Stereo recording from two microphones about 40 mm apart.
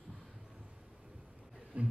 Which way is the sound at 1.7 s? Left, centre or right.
Right.